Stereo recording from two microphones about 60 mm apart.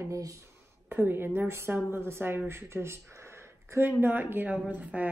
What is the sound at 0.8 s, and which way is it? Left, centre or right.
Speech, right.